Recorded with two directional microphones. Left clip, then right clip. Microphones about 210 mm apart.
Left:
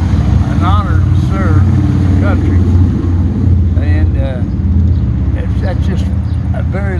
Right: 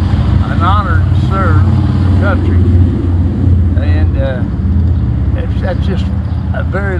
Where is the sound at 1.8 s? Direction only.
45° left (ahead or behind).